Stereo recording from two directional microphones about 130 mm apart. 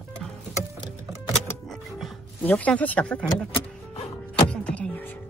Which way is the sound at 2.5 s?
10° left (ahead or behind).